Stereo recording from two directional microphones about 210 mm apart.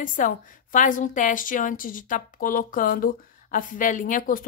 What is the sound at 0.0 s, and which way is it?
Speech, 40° left (ahead or behind).